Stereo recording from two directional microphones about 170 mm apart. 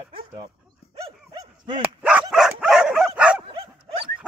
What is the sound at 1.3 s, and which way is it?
Dog, 25° right (ahead or behind).